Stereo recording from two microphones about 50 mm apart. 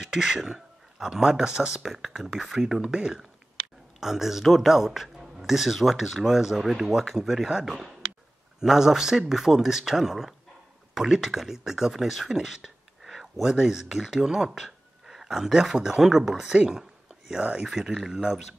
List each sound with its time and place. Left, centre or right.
0.0 s speech: centre
1.9 s speech: centre; by 17.6 s right
17.6 s speech: centre